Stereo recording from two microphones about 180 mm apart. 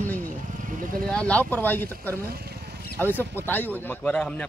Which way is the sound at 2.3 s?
60° right (ahead or behind).